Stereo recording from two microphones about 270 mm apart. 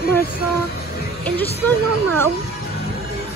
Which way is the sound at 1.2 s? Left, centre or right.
Centre.